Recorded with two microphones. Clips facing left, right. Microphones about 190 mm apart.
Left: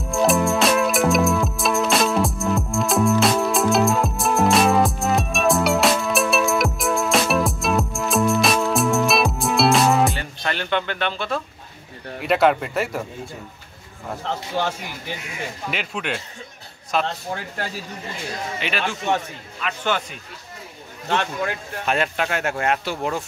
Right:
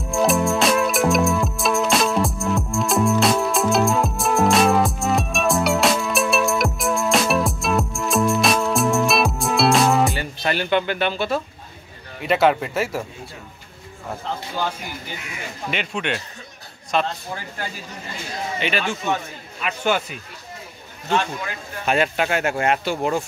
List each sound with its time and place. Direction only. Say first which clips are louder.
0.0 s music: even; centre (ahead or behind)
12.2 s speech: even; centre (ahead or behind)
15.7 s speech: right 4 dB; 5° left (ahead or behind)
18.6 s speech: right 3 dB; centre (ahead or behind)
21.1 s a man's voice: even; 65° left (ahead or behind)
21.8 s speech: right 3 dB; 5° right (ahead or behind)